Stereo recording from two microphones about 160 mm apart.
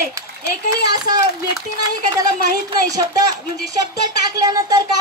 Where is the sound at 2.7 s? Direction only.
20° right (ahead or behind).